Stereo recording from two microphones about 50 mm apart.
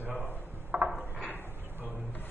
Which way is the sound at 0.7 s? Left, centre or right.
Right.